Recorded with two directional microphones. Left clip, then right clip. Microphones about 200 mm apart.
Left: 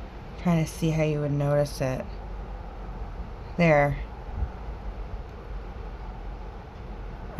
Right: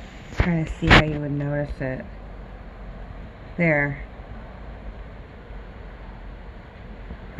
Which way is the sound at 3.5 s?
25° left (ahead or behind).